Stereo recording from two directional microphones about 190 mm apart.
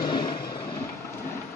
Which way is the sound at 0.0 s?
25° left (ahead or behind).